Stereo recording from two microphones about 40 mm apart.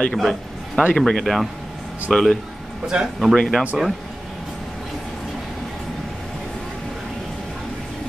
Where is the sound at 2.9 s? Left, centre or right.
Right.